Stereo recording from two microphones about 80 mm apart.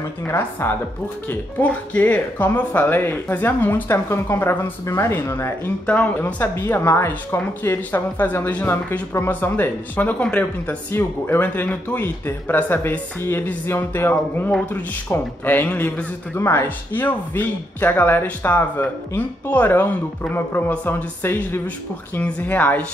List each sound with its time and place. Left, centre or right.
0.3 s speech: left
5.9 s speech: centre
10.9 s speech: left
16.3 s speech: left